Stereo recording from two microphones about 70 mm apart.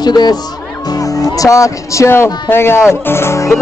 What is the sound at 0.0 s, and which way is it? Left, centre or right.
Speech, left.